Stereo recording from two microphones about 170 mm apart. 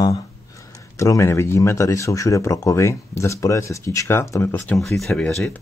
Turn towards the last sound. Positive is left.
turn(degrees=5)  # may be behind; listen again after turning